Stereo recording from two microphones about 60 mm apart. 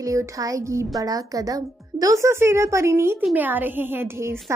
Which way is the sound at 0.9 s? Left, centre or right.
Right.